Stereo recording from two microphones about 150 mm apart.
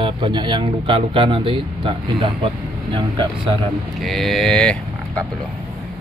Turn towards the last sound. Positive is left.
turn(degrees=5)  # may be behind; listen again after turning